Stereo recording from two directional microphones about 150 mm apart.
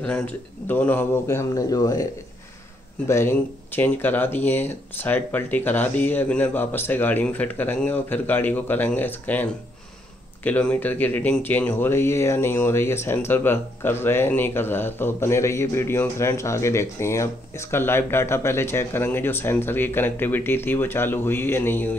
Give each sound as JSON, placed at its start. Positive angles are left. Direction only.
{"t": 0.7, "sound": "speech", "side_deg": 10}
{"t": 3.1, "sound": "speech", "side_deg": 15}